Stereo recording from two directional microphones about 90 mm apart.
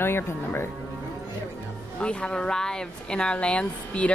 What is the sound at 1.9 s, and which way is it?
Speech, 10° left (ahead or behind).